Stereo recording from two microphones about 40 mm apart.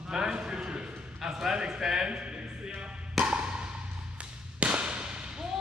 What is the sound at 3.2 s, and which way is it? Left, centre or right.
Music, centre.